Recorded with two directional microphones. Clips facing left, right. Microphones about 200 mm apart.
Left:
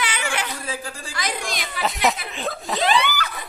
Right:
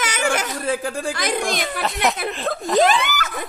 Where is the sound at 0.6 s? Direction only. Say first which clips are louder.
Right 9 dB; 60° right (ahead or behind).